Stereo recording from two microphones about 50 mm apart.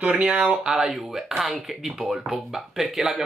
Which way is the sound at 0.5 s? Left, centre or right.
Centre.